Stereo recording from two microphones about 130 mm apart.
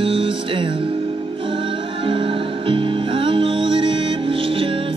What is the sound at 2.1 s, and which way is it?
Music, 40° right (ahead or behind).